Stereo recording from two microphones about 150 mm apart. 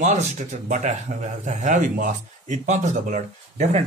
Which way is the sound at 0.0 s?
50° right (ahead or behind).